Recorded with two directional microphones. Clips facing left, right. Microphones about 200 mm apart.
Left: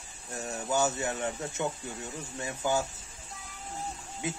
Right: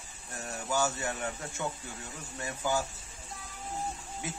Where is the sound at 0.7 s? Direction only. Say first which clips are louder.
Left 2 dB; 20° left (ahead or behind).